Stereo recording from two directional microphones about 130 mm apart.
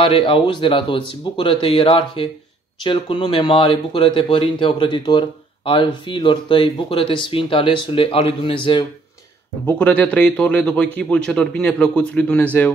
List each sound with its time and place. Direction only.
0.0 s speech: 40° left (ahead or behind)
9.7 s a man's voice: 10° left (ahead or behind)